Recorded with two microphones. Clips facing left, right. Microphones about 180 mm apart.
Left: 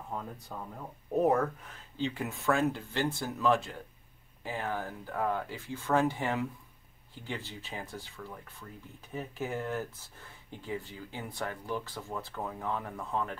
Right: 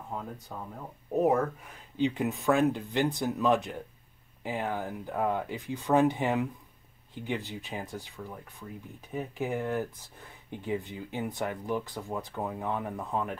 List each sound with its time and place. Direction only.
0.1 s speech: 5° right (ahead or behind)
2.0 s speech: 20° right (ahead or behind)